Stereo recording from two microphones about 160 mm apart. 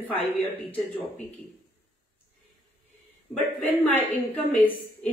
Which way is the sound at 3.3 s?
10° left (ahead or behind).